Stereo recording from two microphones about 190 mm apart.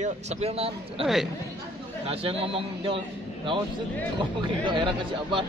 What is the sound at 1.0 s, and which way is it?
Speech, centre (ahead or behind).